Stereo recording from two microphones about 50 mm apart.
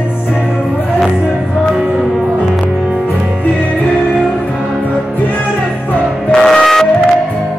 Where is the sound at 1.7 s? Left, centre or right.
Centre.